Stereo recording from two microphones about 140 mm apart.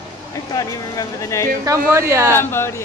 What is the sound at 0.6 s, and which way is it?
Speech, 25° left (ahead or behind).